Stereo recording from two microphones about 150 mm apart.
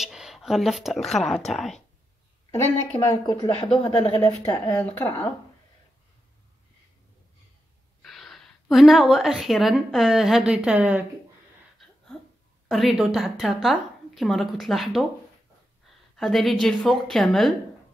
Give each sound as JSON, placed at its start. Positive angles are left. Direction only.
{"t": 0.0, "sound": "speech", "side_deg": -5}
{"t": 2.9, "sound": "speech", "side_deg": 20}
{"t": 3.6, "sound": "speech", "side_deg": 40}
{"t": 4.2, "sound": "speech", "side_deg": 15}
{"t": 8.0, "sound": "a woman's voice", "side_deg": 0}
{"t": 12.6, "sound": "a woman's voice", "side_deg": 0}
{"t": 16.2, "sound": "a woman's voice", "side_deg": 0}